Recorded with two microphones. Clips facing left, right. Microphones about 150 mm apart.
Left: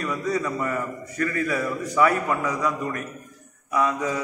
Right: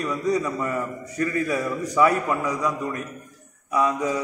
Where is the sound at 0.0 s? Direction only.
15° right (ahead or behind).